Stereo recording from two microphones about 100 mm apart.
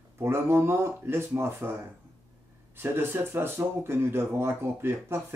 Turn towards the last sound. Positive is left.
turn(degrees=-20)  # may be behind; listen again after turning